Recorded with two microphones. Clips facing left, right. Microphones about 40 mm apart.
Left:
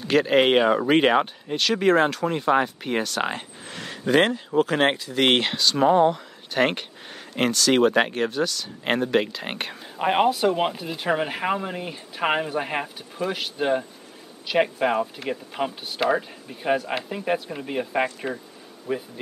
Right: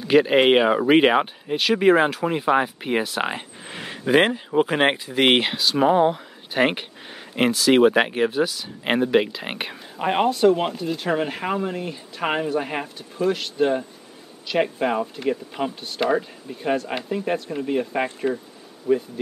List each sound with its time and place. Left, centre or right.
0.1 s speech: centre
10.0 s speech: centre
18.9 s speech: centre